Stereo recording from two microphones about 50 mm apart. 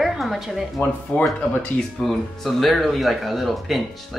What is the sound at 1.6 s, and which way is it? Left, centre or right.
Speech, left.